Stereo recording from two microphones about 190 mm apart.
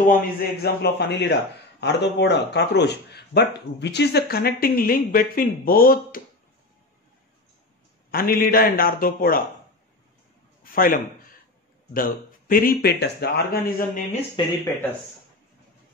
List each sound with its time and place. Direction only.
0.2 s speech: 55° left (ahead or behind)
8.1 s speech: 50° left (ahead or behind)
10.6 s a sound: 50° left (ahead or behind)
11.9 s speech: 50° left (ahead or behind)
14.4 s speech: 25° left (ahead or behind)